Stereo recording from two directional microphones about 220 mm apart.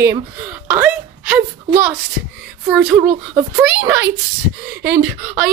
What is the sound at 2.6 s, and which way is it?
A child's voice, 5° right (ahead or behind).